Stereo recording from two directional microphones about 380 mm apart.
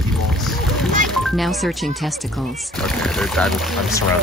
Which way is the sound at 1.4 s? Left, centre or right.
Centre.